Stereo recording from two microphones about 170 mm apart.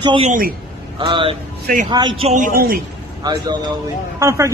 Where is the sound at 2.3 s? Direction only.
55° right (ahead or behind).